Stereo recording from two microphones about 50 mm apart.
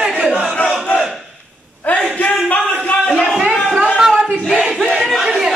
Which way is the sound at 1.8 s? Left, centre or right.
Left.